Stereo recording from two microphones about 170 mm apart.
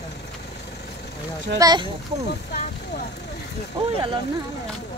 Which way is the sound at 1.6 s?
25° right (ahead or behind).